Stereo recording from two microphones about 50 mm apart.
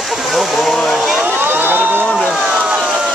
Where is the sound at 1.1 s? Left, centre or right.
Right.